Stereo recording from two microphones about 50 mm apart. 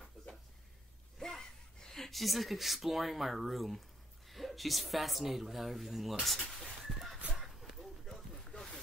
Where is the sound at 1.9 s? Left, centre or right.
Centre.